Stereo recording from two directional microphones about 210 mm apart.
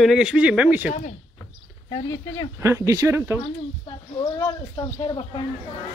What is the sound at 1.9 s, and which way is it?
Speech, 15° left (ahead or behind).